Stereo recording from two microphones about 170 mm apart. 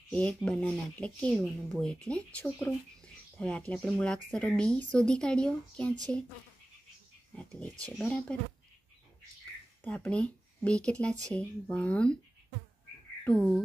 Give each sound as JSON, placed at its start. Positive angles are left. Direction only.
{"t": 0.1, "sound": "speech", "side_deg": 5}
{"t": 7.8, "sound": "speech", "side_deg": 5}
{"t": 9.8, "sound": "speech", "side_deg": 5}
{"t": 13.2, "sound": "speech", "side_deg": 5}